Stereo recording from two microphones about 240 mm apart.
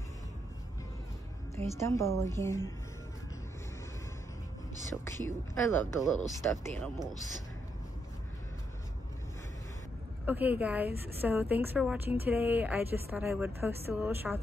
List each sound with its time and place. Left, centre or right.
1.5 s a woman's voice: centre
5.0 s a woman's voice: centre
10.2 s a woman's voice: centre